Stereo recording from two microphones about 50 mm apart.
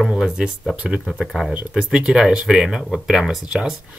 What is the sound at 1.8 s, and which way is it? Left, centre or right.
Speech, centre.